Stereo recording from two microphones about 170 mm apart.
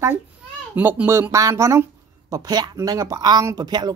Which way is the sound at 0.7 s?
10° right (ahead or behind).